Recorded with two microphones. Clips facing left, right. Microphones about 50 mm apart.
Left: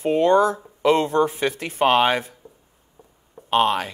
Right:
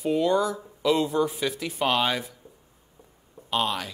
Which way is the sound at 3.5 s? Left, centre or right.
Left.